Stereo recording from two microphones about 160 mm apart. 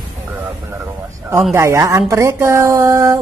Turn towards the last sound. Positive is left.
turn(degrees=-15)  # may be behind; listen again after turning